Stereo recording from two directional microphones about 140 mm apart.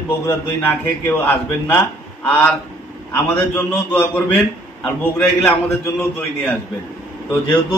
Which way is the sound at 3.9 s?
15° left (ahead or behind).